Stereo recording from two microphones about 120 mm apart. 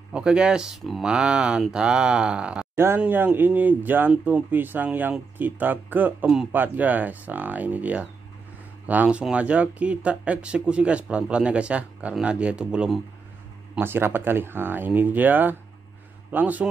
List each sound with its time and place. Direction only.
0.1 s speech: 5° right (ahead or behind)
2.7 s speech: 20° right (ahead or behind)
13.7 s speech: 20° right (ahead or behind)